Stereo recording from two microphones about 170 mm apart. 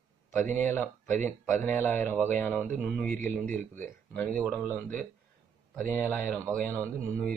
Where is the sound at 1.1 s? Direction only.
45° right (ahead or behind).